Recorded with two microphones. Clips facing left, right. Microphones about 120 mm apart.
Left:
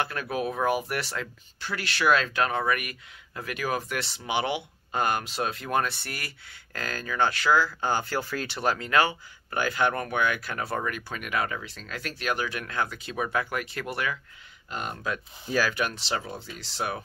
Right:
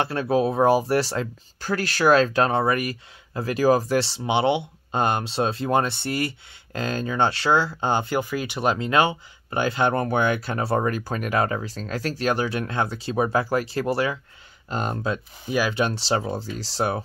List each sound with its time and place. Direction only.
0.0 s speech: 30° right (ahead or behind)
15.4 s speech: 15° right (ahead or behind); by 17.0 s 35° right (ahead or behind)